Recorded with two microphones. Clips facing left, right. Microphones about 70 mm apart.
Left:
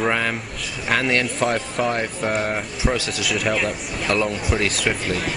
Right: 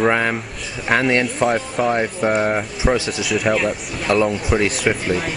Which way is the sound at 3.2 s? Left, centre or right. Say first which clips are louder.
Right 3 dB; centre.